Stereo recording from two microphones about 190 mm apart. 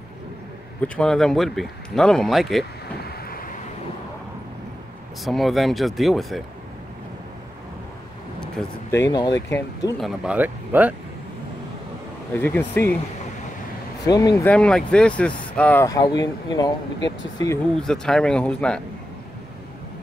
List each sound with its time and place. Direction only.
0.8 s speech: 5° left (ahead or behind)
3.0 s waves: 50° left (ahead or behind)
5.2 s speech: centre (ahead or behind)
8.6 s speech: 5° left (ahead or behind)
8.9 s speech: 20° left (ahead or behind)
9.9 s speech: 5° right (ahead or behind)
12.4 s speech: 10° left (ahead or behind)
14.0 s speech: 20° left (ahead or behind)
14.5 s speech: 5° left (ahead or behind); by 16.7 s 20° left (ahead or behind)
17.0 s speech: 75° left (ahead or behind)
17.7 s speech: 5° left (ahead or behind)